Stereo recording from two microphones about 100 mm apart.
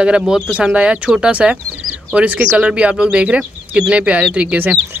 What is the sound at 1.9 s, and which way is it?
Bird, 15° right (ahead or behind).